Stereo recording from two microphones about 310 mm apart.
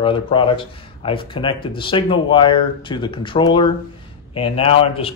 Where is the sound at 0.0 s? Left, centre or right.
Centre.